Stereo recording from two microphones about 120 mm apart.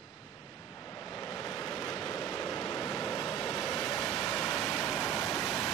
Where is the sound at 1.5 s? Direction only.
Centre (ahead or behind).